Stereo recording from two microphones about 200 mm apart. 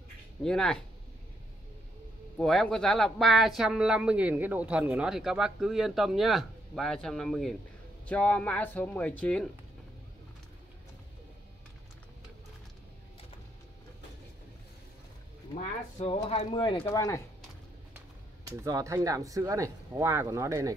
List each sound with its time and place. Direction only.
0.4 s speech: 5° left (ahead or behind)
2.3 s speech: centre (ahead or behind)
16.0 s speech: 25° left (ahead or behind)
18.6 s speech: 15° right (ahead or behind)